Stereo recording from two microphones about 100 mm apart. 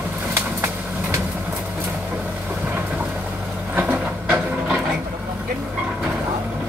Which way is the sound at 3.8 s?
15° right (ahead or behind).